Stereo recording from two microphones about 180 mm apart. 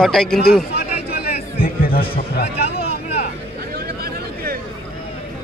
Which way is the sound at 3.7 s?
55° right (ahead or behind).